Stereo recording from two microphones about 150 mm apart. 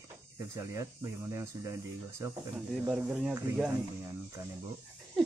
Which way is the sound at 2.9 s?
5° right (ahead or behind).